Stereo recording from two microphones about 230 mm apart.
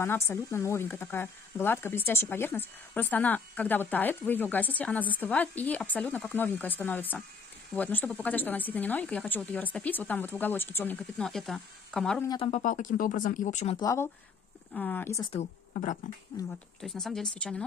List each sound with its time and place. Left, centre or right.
0.0 s speech: centre
12.3 s speech: left
13.7 s speech: centre
15.3 s speech: left
16.8 s a woman's voice: centre